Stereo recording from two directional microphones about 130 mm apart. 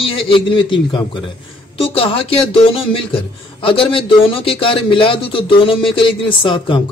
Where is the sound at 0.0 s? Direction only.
45° left (ahead or behind).